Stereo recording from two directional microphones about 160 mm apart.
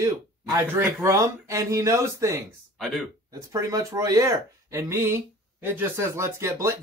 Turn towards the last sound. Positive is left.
turn(degrees=-15)  # may be behind; listen again after turning